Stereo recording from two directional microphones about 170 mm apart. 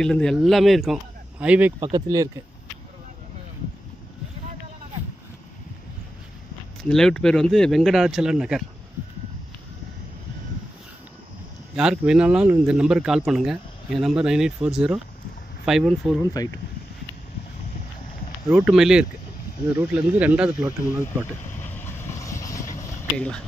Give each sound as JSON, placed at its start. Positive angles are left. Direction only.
{"t": 0.0, "sound": "speech", "side_deg": 5}
{"t": 1.8, "sound": "speech", "side_deg": -25}
{"t": 6.8, "sound": "speech", "side_deg": 5}
{"t": 11.7, "sound": "speech", "side_deg": -5}
{"t": 16.4, "sound": "speech", "side_deg": 20}
{"t": 18.5, "sound": "speech", "side_deg": -5}
{"t": 21.5, "sound": "vehicle", "side_deg": 10}
{"t": 23.1, "sound": "speech", "side_deg": 5}